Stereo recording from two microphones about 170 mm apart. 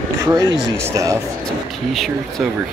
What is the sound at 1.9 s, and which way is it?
Speech, centre (ahead or behind).